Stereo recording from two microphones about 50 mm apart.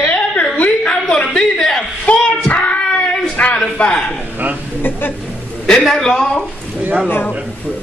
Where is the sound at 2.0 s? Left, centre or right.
Left.